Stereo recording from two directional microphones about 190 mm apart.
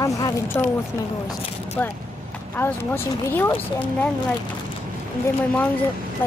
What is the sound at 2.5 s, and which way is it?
Speech, 10° left (ahead or behind).